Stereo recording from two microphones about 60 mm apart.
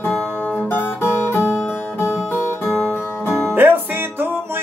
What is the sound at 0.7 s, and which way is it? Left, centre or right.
Music, left.